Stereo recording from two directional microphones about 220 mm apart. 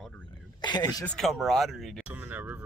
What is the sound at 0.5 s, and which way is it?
Speech, 20° left (ahead or behind).